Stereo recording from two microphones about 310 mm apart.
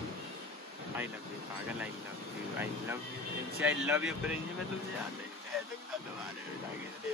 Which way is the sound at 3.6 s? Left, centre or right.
Centre.